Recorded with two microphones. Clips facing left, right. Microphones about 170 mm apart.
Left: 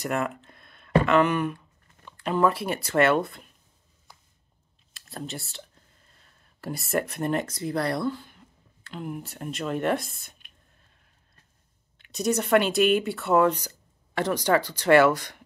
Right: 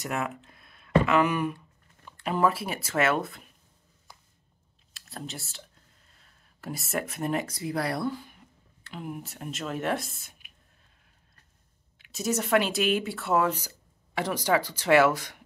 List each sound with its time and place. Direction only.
0.0 s speech: centre (ahead or behind)
4.9 s speech: centre (ahead or behind)
6.6 s speech: centre (ahead or behind)
12.0 s speech: centre (ahead or behind)